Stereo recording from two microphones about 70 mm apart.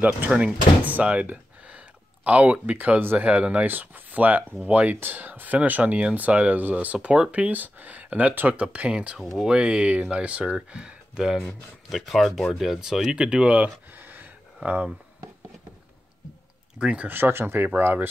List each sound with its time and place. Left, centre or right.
0.0 s speech: centre
11.9 s speech: centre
16.7 s speech: centre
17.1 s speech: right